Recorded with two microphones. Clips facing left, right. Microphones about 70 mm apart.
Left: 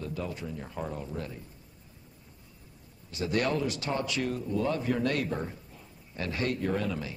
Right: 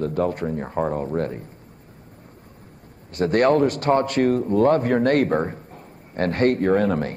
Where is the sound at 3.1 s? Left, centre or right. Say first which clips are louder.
Right 11 dB; right.